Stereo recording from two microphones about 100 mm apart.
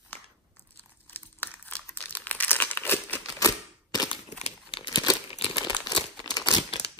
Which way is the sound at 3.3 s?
40° left (ahead or behind).